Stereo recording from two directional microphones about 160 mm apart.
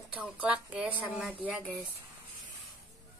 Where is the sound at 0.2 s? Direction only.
10° right (ahead or behind).